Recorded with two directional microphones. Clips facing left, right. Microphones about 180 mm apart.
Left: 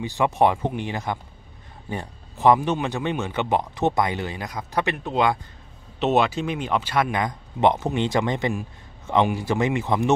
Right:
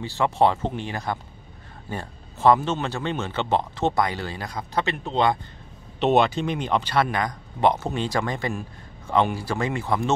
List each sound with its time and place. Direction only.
0.0 s a man's voice: 15° left (ahead or behind)
5.9 s speech: 5° left (ahead or behind)
7.1 s speech: 20° left (ahead or behind)